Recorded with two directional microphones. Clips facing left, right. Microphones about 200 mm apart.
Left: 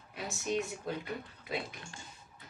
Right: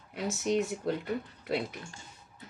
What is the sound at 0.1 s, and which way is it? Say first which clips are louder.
Speech: right 5 dB; 65° right (ahead or behind).